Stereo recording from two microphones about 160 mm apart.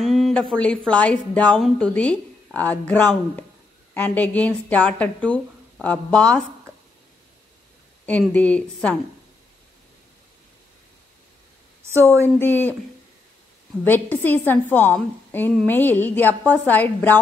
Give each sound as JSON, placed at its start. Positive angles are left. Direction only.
{"t": 0.0, "sound": "speech", "side_deg": 0}
{"t": 8.0, "sound": "speech", "side_deg": 10}
{"t": 11.9, "sound": "speech", "side_deg": -20}
{"t": 12.4, "sound": "speech", "side_deg": 10}
{"t": 13.8, "sound": "speech", "side_deg": 10}